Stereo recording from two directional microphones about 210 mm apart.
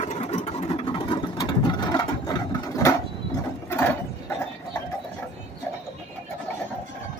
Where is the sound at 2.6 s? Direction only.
15° left (ahead or behind).